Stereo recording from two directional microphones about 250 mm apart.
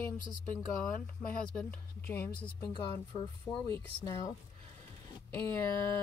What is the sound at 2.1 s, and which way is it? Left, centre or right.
Speech, centre.